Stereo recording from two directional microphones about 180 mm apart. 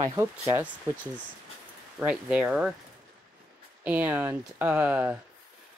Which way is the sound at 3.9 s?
10° right (ahead or behind).